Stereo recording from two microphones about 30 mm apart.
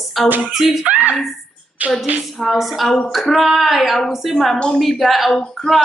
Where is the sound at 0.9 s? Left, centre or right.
Right.